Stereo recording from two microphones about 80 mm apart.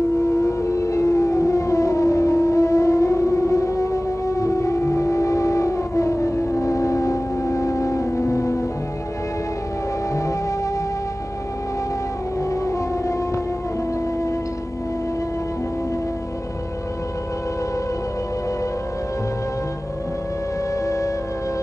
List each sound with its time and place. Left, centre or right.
0.5 s civil defense siren: left
12.4 s siren: left
20.8 s music: left